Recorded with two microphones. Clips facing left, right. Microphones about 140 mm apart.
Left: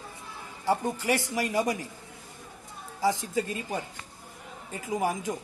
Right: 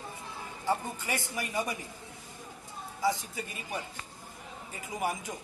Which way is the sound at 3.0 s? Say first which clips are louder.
Left 4 dB; 90° left.